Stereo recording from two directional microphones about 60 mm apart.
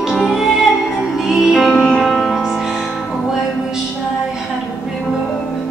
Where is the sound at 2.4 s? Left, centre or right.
Centre.